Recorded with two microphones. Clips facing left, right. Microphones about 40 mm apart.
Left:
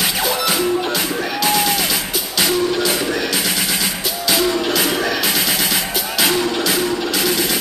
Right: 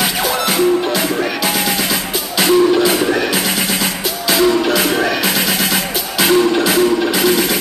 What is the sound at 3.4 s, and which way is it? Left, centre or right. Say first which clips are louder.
Music: right 3 dB; centre.